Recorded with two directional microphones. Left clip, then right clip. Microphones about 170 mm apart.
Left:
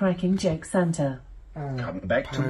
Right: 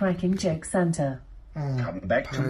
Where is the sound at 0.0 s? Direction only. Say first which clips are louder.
Left 1 dB; 5° left (ahead or behind).